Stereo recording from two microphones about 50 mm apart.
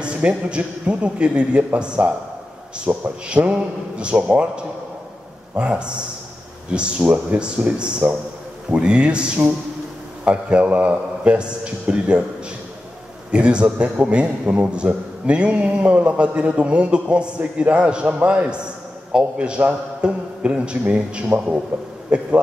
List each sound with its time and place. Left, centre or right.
0.0 s a man's voice: right
13.3 s a man's voice: centre